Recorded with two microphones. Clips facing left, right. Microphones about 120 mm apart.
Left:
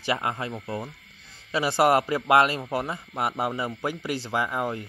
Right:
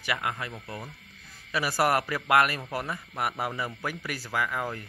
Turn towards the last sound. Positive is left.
turn(degrees=20)  # may be behind; listen again after turning